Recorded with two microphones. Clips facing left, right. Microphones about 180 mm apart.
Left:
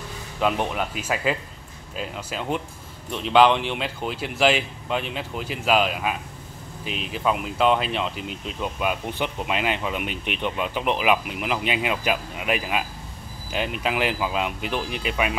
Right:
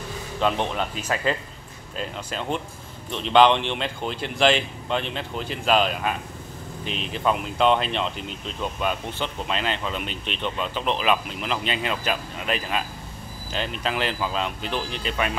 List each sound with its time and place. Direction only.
0.4 s speech: 5° left (ahead or behind)